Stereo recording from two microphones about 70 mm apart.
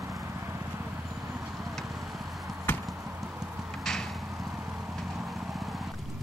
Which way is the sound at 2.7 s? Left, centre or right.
Left.